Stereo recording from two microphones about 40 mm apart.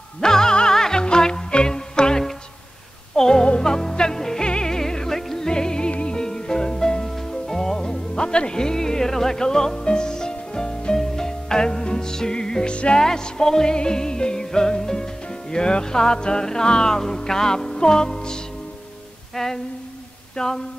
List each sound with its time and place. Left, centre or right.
0.2 s music: centre
13.0 s music: centre
20.3 s a sound: centre